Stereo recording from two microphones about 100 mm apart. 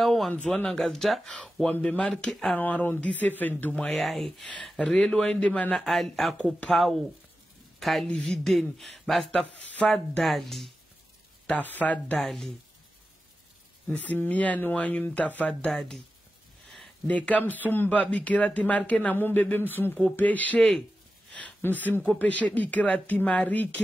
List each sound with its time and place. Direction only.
0.0 s a sound: centre (ahead or behind)
0.7 s speech: 5° left (ahead or behind)
3.8 s speech: centre (ahead or behind)
5.9 s speech: centre (ahead or behind)
11.7 s speech: 15° left (ahead or behind)
12.2 s speech: centre (ahead or behind)
13.8 s speech: 15° left (ahead or behind)
17.1 s speech: 15° left (ahead or behind)
21.4 s a sound: 10° left (ahead or behind)
21.7 s speech: 15° left (ahead or behind)